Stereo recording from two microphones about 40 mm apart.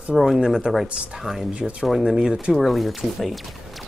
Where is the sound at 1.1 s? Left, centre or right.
Centre.